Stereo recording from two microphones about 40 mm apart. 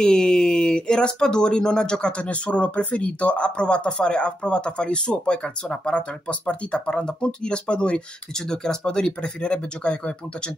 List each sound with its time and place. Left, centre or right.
0.0 s speech: centre
8.4 s speech: centre